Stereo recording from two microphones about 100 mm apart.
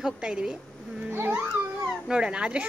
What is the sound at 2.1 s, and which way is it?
Speech, 10° right (ahead or behind).